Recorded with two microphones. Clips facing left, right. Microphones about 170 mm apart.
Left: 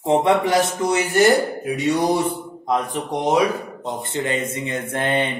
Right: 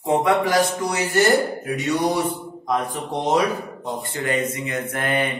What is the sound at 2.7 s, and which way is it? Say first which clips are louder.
A man's voice: left 2 dB; 15° left (ahead or behind).